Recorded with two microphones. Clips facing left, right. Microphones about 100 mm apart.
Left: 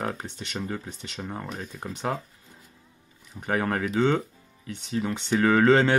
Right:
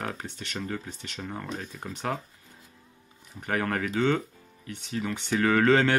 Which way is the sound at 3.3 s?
15° left (ahead or behind).